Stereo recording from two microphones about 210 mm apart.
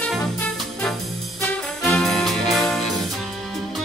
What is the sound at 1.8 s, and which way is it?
Music, centre (ahead or behind).